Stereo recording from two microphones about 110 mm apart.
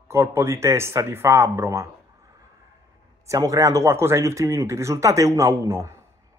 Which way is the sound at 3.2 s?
30° right (ahead or behind).